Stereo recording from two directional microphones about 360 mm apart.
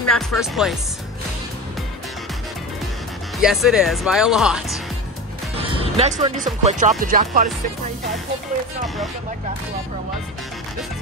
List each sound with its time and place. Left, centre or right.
0.1 s speech: centre
3.3 s speech: centre
5.7 s speech: centre
8.8 s speech: centre